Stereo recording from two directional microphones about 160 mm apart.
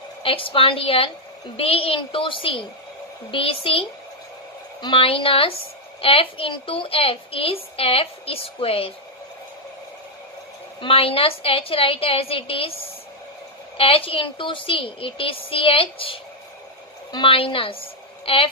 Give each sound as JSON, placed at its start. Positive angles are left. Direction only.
{"t": 0.2, "sound": "a woman's voice", "side_deg": 35}
{"t": 4.8, "sound": "a woman's voice", "side_deg": 35}
{"t": 10.8, "sound": "a woman's voice", "side_deg": 35}
{"t": 13.7, "sound": "a woman's voice", "side_deg": 35}